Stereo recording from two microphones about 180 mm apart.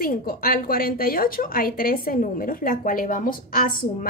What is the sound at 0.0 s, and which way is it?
A woman's voice, 55° left (ahead or behind).